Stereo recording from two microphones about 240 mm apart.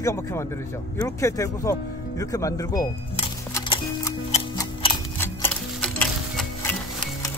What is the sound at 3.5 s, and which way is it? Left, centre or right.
Music, centre.